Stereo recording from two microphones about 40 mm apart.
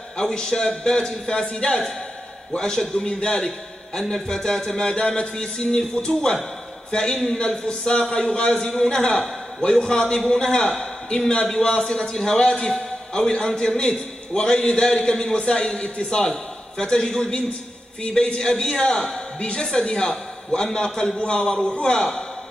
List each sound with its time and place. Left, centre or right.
0.2 s a man's voice: centre
4.9 s a man's voice: left